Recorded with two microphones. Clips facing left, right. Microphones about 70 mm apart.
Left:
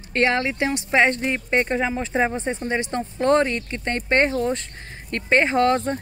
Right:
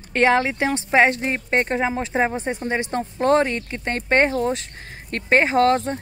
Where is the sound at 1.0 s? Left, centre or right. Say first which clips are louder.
Right 1 dB; centre.